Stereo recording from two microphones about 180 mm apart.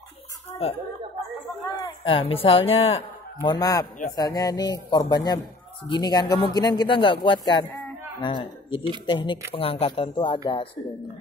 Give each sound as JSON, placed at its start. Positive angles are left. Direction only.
{"t": 1.8, "sound": "speech", "side_deg": 30}
{"t": 3.4, "sound": "speech", "side_deg": 20}
{"t": 7.7, "sound": "a sound", "side_deg": 25}
{"t": 9.0, "sound": "speech", "side_deg": 25}